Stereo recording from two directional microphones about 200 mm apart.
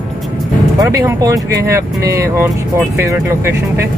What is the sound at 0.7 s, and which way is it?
Speech, 15° right (ahead or behind).